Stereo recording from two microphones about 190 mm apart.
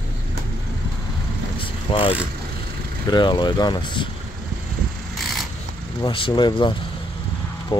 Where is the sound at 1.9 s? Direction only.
30° left (ahead or behind).